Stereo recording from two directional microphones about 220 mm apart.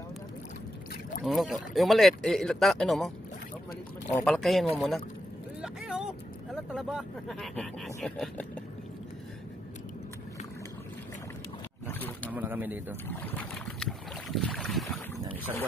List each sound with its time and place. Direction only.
1.2 s speech: centre (ahead or behind)
4.2 s speech: centre (ahead or behind)
5.6 s vehicle: 5° right (ahead or behind)
6.5 s speech: centre (ahead or behind)
11.9 s wild animals: 10° left (ahead or behind)
12.3 s speech: 10° right (ahead or behind)
13.1 s boat: 10° left (ahead or behind)